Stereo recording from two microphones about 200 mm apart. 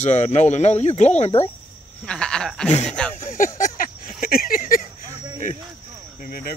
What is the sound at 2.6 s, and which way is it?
Speech, 35° left (ahead or behind).